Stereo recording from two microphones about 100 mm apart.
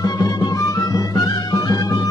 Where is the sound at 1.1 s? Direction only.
40° left (ahead or behind).